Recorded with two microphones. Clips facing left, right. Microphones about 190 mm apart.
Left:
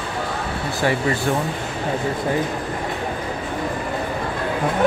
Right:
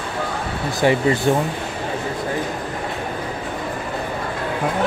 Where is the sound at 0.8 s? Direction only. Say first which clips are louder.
Right 4 dB; 20° right (ahead or behind).